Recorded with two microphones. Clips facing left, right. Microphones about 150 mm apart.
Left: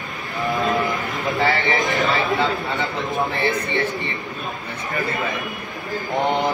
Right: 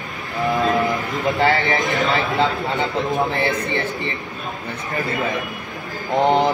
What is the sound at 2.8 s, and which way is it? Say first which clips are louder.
Speech: right 3 dB; 20° right (ahead or behind).